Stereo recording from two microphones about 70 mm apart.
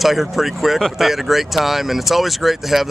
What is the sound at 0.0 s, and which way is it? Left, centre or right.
Speech, centre.